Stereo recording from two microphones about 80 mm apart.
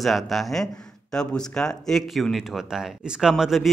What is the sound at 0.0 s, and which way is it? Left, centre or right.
Speech, centre.